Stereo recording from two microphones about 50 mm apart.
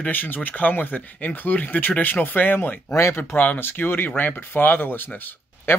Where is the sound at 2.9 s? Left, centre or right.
Left.